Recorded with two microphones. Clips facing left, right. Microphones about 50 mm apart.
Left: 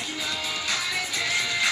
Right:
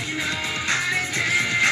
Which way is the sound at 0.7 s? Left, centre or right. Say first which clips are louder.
Right 6 dB; right.